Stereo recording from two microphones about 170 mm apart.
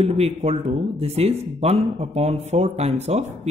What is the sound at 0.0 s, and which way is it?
Speech, 35° right (ahead or behind).